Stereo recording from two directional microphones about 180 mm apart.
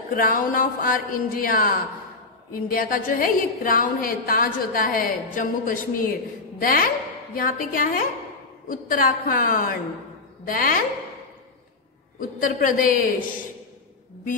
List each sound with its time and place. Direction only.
0.1 s a woman's voice: 50° left (ahead or behind)
12.2 s a woman's voice: 50° left (ahead or behind)